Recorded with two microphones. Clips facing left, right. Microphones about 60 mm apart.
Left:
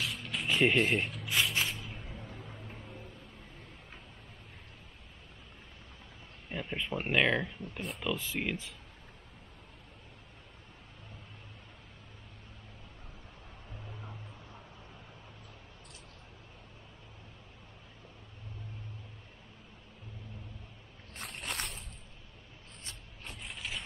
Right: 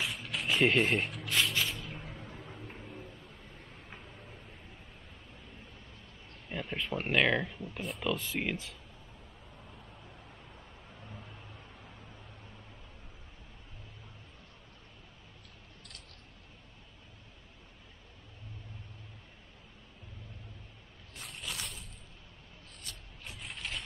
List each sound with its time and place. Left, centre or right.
0.0 s music: centre
1.6 s spray: centre
2.4 s music: centre
6.5 s speech: centre
21.1 s a sound: left
23.2 s mechanisms: centre